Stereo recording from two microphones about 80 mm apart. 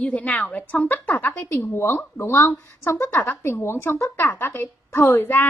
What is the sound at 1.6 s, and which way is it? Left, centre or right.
Speech, left.